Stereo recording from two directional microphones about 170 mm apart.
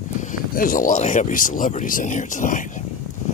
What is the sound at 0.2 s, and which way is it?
Speech, 50° left (ahead or behind).